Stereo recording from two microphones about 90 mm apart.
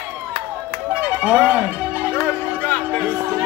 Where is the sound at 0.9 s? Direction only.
10° right (ahead or behind).